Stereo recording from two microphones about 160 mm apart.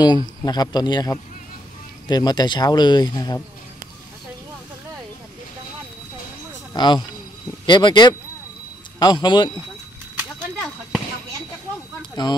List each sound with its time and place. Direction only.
0.0 s speech: 25° left (ahead or behind)
6.7 s speech: 25° left (ahead or behind)
12.0 s a sound: 25° left (ahead or behind)